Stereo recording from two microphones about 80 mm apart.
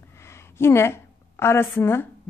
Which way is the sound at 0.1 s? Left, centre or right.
Left.